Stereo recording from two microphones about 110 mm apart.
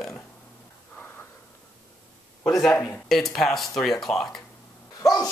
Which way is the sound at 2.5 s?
Centre (ahead or behind).